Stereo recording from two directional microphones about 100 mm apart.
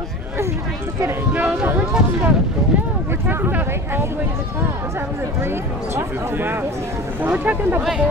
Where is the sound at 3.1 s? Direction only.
20° right (ahead or behind).